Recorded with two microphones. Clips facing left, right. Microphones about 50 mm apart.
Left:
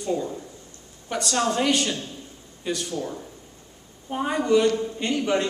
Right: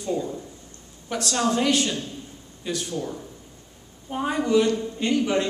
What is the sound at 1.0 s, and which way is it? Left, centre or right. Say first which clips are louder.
A woman's voice: even; centre.